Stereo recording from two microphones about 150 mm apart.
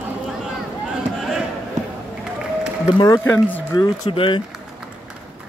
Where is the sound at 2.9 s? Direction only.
25° left (ahead or behind).